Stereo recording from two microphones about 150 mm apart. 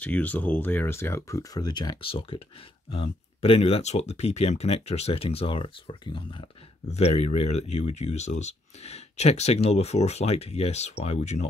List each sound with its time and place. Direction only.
0.0 s speech: 10° left (ahead or behind); by 11.4 s 45° left (ahead or behind)